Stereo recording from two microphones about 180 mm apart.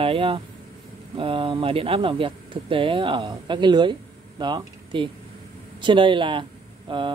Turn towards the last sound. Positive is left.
turn(degrees=-30)  # may be behind; listen again after turning